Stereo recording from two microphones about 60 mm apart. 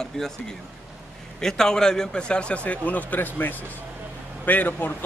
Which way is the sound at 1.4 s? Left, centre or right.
Centre.